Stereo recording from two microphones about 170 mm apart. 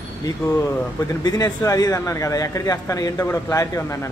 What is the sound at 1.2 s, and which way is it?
A man's voice, 20° left (ahead or behind).